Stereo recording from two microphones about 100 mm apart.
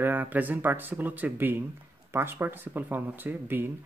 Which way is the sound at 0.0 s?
20° right (ahead or behind).